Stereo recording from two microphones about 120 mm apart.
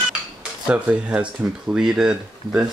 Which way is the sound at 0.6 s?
10° right (ahead or behind).